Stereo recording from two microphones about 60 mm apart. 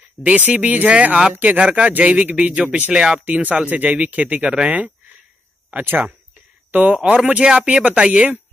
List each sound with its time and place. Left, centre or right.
0.4 s speech: right
5.9 s speech: right
7.0 s speech: right